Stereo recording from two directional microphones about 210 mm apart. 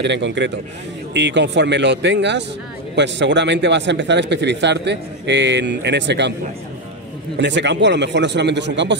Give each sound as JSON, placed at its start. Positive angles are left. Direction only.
{"t": 0.0, "sound": "speech", "side_deg": -55}
{"t": 7.3, "sound": "speech", "side_deg": -55}